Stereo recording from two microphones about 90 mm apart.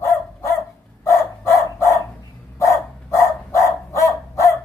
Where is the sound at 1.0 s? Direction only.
35° left (ahead or behind).